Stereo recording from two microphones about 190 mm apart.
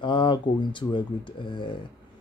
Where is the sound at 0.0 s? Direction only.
25° left (ahead or behind).